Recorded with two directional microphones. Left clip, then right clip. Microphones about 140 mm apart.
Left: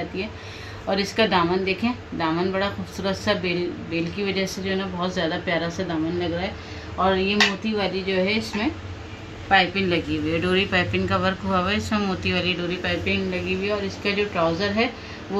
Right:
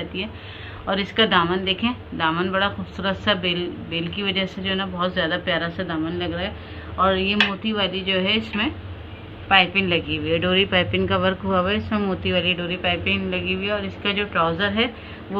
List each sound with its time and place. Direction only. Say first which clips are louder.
0.8 s a woman's voice: right 1 dB; 15° right (ahead or behind)
5.1 s a woman's voice: even; 5° left (ahead or behind)
9.5 s speech: right 2 dB; 25° right (ahead or behind)